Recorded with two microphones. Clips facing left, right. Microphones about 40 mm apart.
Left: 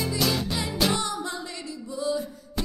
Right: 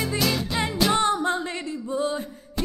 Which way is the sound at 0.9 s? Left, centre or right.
Right.